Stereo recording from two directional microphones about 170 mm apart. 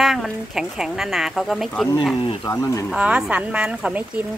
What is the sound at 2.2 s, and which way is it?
Speech, 20° left (ahead or behind).